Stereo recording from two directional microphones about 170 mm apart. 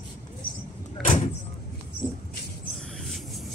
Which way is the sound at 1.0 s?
45° left (ahead or behind).